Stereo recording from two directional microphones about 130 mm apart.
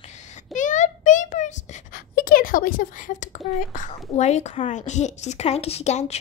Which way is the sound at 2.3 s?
90° left.